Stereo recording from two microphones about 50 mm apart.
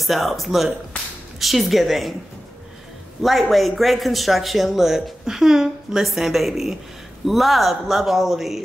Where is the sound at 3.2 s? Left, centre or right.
Centre.